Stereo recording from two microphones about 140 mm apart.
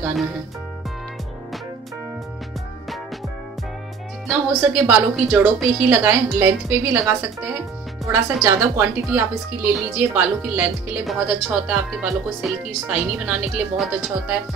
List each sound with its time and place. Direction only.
0.0 s speech: centre (ahead or behind)
4.3 s a woman's voice: 5° right (ahead or behind)